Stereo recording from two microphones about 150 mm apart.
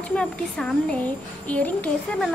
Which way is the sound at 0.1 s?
5° left (ahead or behind).